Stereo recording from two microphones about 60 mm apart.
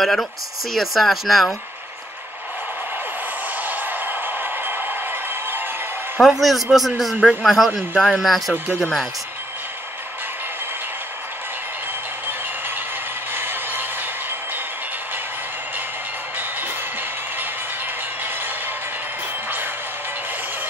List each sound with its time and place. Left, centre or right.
0.0 s speech: centre
3.5 s a sound: right
6.1 s speech: centre
7.9 s speech: centre
8.2 s speech: centre
13.3 s a sound: right
16.3 s music: right